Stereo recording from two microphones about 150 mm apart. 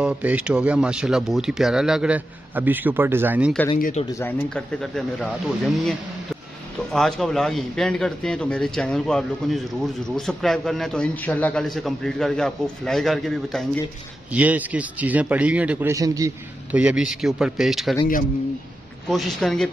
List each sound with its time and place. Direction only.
0.0 s speech: 10° right (ahead or behind)
4.1 s a man's voice: 15° left (ahead or behind)
14.3 s speech: 10° right (ahead or behind)
15.9 s a man's voice: 20° right (ahead or behind)
16.7 s a man's voice: 5° right (ahead or behind)
19.0 s a man's voice: centre (ahead or behind)